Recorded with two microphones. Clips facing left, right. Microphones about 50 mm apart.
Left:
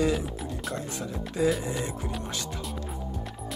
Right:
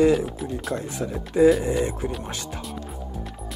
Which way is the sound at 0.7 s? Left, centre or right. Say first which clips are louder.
Right 5 dB; right.